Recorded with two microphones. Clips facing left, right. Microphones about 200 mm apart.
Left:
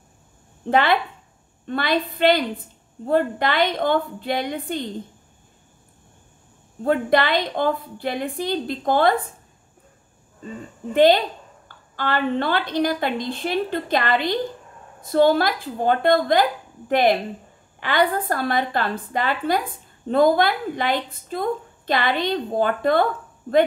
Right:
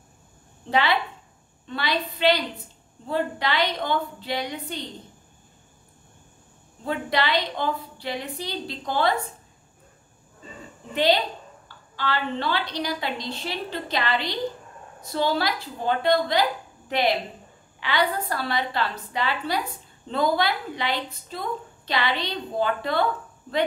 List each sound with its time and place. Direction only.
0.7 s a woman's voice: 50° left (ahead or behind)
6.8 s a woman's voice: 50° left (ahead or behind)
10.9 s a woman's voice: 50° left (ahead or behind)